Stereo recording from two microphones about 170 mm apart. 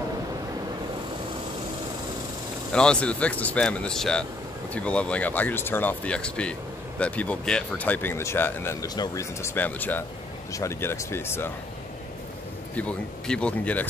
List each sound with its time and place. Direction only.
2.7 s speech: 5° left (ahead or behind)
8.8 s speech: 25° left (ahead or behind)
12.7 s speech: 5° left (ahead or behind)